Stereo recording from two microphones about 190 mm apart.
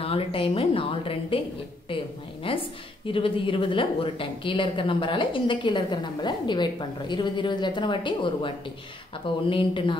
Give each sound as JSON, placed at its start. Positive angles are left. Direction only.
{"t": 0.0, "sound": "a woman's voice", "side_deg": 30}
{"t": 2.4, "sound": "a woman's voice", "side_deg": 30}